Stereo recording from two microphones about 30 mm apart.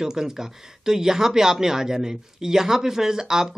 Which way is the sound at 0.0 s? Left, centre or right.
Centre.